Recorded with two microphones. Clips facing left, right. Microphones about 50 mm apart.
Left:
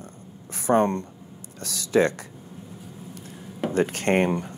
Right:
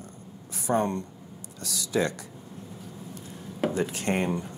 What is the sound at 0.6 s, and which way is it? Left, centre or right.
Speech, left.